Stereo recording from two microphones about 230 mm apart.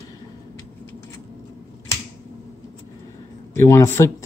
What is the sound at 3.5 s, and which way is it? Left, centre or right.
Speech, centre.